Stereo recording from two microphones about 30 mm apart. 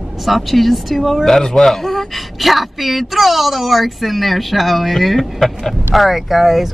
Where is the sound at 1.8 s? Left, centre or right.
Centre.